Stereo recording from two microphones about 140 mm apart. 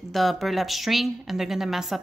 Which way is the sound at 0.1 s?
Centre (ahead or behind).